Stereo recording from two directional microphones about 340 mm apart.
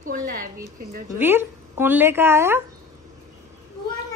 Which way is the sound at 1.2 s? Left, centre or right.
Centre.